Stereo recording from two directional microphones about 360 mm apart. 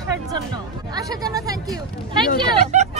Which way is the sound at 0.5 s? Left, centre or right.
Centre.